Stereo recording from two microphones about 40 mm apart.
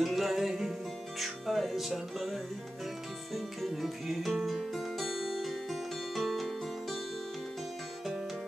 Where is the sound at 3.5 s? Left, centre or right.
Centre.